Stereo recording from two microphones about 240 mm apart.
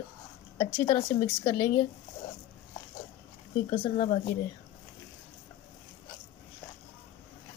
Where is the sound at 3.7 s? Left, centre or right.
Left.